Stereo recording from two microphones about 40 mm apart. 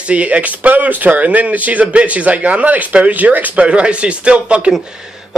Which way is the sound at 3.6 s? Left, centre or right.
Right.